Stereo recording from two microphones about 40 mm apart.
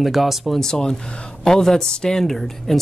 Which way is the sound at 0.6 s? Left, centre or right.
Centre.